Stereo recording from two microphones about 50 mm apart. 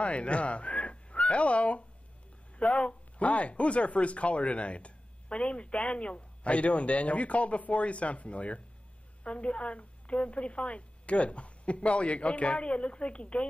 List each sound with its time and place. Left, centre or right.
0.0 s speech: left